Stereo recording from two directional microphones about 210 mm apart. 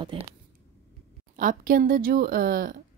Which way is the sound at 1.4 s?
40° right (ahead or behind).